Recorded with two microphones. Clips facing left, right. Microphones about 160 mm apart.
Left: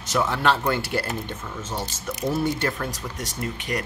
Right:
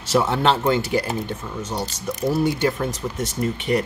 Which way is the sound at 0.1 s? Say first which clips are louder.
Right 3 dB; 25° right (ahead or behind).